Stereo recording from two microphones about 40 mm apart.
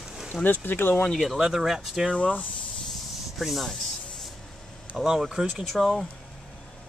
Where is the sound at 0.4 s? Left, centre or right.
Left.